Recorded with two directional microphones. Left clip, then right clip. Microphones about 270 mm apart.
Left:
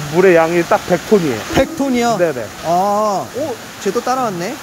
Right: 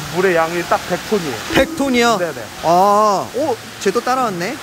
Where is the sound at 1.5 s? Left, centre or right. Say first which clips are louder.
Right 2 dB; centre.